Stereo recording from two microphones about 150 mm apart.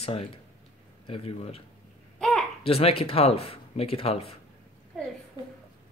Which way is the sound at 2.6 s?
40° left (ahead or behind).